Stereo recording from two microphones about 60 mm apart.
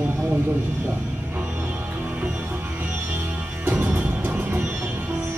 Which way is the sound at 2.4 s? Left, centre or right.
Right.